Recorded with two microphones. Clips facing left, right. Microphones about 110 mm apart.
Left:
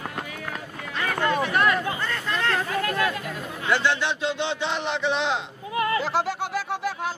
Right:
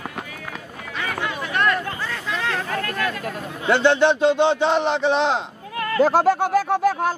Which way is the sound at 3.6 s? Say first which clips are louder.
Right 6 dB; 30° right (ahead or behind).